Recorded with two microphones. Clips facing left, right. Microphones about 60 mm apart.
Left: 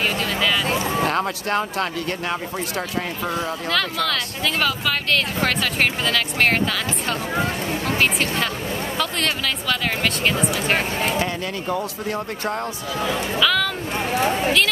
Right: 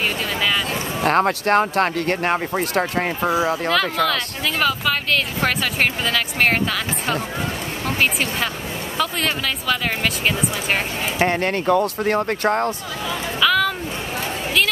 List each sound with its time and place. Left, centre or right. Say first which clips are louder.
1.0 s speech: right 5 dB; right
3.3 s speech: right 7 dB; centre
8.9 s speech: right 4 dB; centre
11.1 s speech: right 5 dB; right
13.4 s a sound: right 3 dB; centre